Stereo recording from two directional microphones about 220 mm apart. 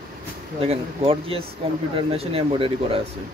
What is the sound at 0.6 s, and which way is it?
Speech, 25° right (ahead or behind).